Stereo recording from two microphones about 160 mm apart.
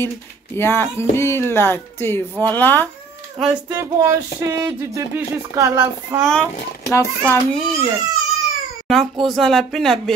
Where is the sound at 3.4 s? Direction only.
5° right (ahead or behind).